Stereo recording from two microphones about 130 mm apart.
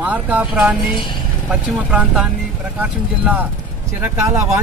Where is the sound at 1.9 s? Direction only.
10° right (ahead or behind).